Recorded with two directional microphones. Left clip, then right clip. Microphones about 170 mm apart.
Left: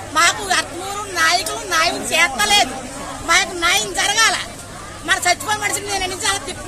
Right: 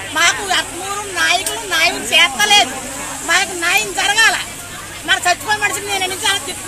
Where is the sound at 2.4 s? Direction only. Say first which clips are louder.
Right 3 dB; 30° left (ahead or behind).